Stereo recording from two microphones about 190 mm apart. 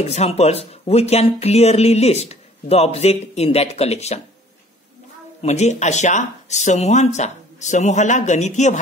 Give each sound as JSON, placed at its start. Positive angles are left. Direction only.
{"t": 0.0, "sound": "speech", "side_deg": 35}
{"t": 5.4, "sound": "speech", "side_deg": 35}